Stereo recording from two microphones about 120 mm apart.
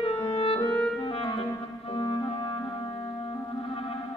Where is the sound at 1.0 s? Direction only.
50° left (ahead or behind).